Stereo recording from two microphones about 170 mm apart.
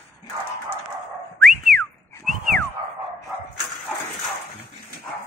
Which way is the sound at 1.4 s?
Centre (ahead or behind).